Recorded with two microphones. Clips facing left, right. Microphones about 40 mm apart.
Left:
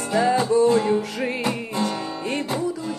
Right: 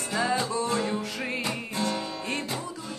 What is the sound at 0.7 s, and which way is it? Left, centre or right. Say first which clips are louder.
Music: left 8 dB; centre.